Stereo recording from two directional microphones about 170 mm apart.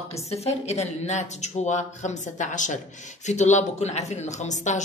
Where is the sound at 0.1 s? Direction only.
40° left (ahead or behind).